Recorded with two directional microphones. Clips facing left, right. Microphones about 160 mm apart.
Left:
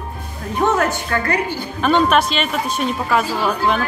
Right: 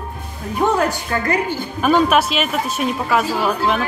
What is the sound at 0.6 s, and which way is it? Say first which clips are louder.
Speech: even; 10° right (ahead or behind).